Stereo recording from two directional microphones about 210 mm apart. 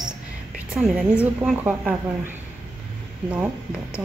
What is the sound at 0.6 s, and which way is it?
A man's voice, 5° right (ahead or behind).